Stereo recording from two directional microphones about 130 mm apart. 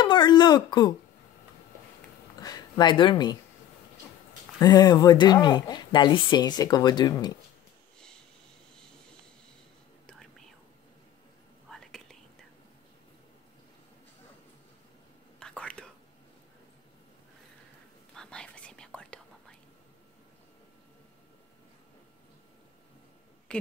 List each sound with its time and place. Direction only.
0.0 s a sound: 35° left (ahead or behind)
2.4 s speech: 30° left (ahead or behind)
4.6 s speech: 30° left (ahead or behind)
11.7 s whispering: 5° left (ahead or behind)
15.3 s whispering: 5° left (ahead or behind)
18.1 s whispering: 5° left (ahead or behind)
23.5 s a sound: 10° left (ahead or behind)